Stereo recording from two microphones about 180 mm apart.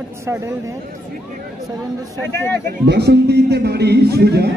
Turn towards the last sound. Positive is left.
turn(degrees=-65)  # may be behind; listen again after turning